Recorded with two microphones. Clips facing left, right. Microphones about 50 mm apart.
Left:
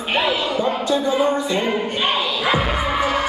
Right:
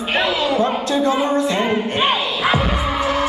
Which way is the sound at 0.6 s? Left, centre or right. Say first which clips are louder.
Right 2 dB; right.